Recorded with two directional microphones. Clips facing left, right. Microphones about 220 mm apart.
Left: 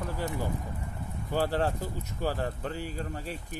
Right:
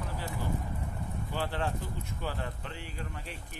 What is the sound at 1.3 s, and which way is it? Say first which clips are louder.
Speech: left 7 dB; 40° left (ahead or behind).